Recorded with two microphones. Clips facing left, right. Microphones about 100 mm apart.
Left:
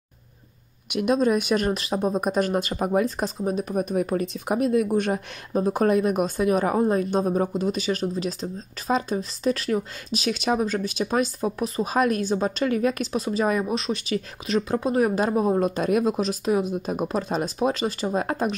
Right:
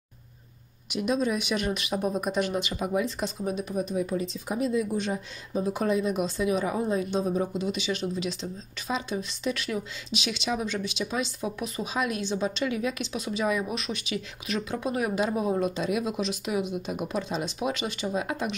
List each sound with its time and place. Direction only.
0.8 s speech: 55° left (ahead or behind); by 18.6 s 40° left (ahead or behind)